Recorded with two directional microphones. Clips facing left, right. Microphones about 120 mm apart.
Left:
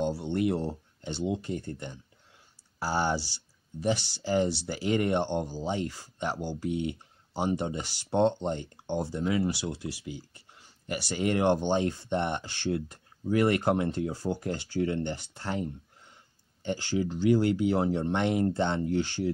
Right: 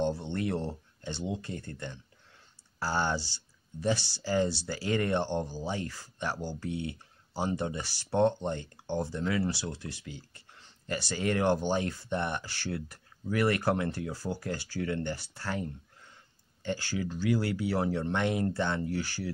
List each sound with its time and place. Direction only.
0.0 s speech: 10° left (ahead or behind)